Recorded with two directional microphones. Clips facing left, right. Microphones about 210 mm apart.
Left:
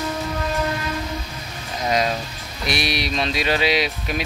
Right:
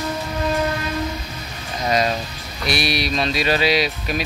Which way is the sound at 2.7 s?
20° left (ahead or behind).